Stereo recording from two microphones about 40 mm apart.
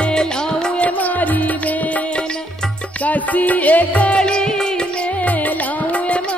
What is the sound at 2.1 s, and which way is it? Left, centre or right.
Music, left.